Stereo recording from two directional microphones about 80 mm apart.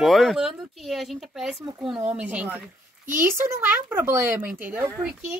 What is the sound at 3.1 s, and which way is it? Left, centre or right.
Speech, right.